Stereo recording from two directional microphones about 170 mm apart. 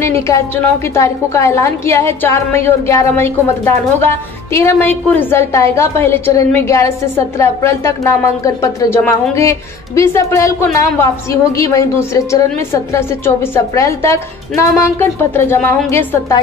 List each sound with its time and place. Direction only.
0.0 s a woman's voice: 15° left (ahead or behind)